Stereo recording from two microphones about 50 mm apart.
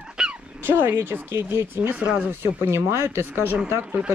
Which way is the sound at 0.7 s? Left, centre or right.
Right.